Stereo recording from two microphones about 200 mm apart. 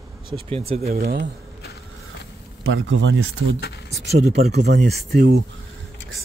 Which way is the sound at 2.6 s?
85° right.